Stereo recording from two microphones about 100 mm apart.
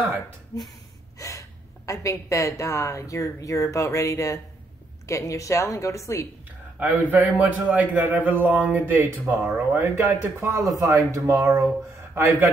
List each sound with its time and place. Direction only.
0.5 s speech: 35° left (ahead or behind)
1.1 s a sound: 35° left (ahead or behind)
1.9 s speech: 30° left (ahead or behind)
6.8 s a man's voice: 20° right (ahead or behind)
10.5 s speech: 30° right (ahead or behind)